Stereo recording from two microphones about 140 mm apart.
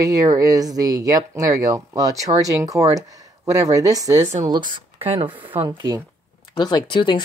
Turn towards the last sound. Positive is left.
turn(degrees=35)  # may be behind; listen again after turning